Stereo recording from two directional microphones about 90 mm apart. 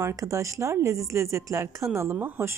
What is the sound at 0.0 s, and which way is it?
A woman's voice, 40° right (ahead or behind).